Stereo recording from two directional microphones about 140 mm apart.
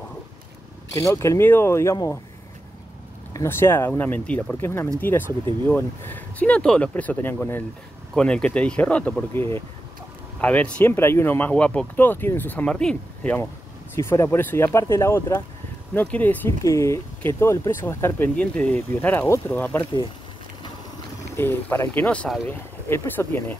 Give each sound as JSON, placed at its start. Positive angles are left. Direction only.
{"t": 0.9, "sound": "speech", "side_deg": 20}
{"t": 3.3, "sound": "speech", "side_deg": 15}
{"t": 16.6, "sound": "speech", "side_deg": 20}
{"t": 21.4, "sound": "speech", "side_deg": 15}